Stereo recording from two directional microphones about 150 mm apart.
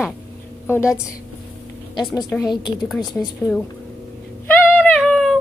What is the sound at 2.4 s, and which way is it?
Speech, 30° left (ahead or behind).